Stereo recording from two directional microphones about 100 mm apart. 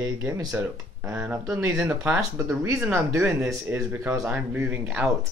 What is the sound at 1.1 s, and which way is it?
Speech, 15° right (ahead or behind).